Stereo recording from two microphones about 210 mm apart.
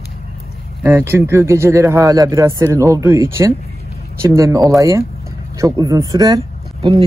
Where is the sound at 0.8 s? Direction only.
10° right (ahead or behind).